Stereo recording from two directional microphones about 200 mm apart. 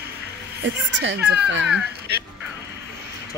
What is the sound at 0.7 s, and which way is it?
A woman's voice, 65° right (ahead or behind).